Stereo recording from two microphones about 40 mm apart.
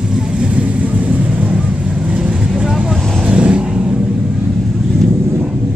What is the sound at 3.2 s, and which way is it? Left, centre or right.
Vehicle, right.